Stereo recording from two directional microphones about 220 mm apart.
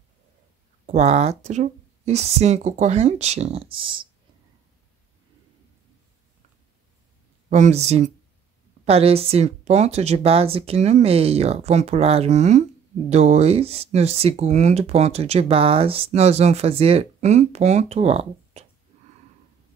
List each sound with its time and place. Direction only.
0.8 s speech: 30° right (ahead or behind)
7.4 s speech: 35° right (ahead or behind)